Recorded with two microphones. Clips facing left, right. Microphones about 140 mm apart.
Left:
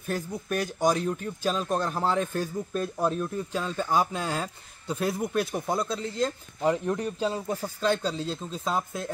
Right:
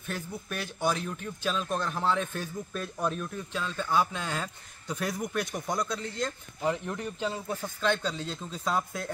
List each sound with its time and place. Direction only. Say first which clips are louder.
0.0 s speech: left 5 dB; 40° left (ahead or behind); by 9.1 s 25° left (ahead or behind)